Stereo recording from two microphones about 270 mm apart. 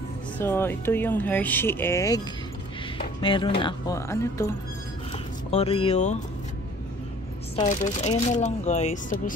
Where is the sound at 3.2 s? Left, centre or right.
Centre.